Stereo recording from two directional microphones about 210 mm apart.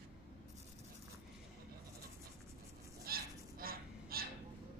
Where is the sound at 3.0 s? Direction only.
45° right (ahead or behind).